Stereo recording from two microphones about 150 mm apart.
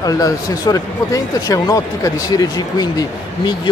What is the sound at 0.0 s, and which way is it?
Speech, 25° left (ahead or behind).